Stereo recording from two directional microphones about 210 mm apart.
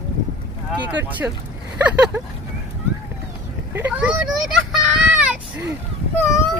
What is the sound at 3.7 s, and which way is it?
A child's voice, 10° right (ahead or behind).